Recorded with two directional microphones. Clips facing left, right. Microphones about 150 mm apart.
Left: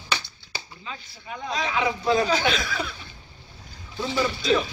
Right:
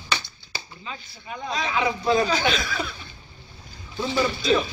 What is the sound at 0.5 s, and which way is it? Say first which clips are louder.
Chop: even; 15° left (ahead or behind).